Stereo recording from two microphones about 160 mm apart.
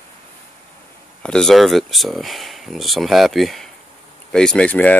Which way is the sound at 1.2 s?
5° left (ahead or behind).